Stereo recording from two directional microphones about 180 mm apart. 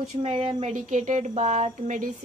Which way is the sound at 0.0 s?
35° right (ahead or behind).